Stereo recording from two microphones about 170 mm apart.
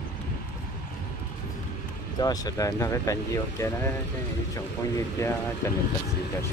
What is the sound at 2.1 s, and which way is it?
Speech, 20° left (ahead or behind).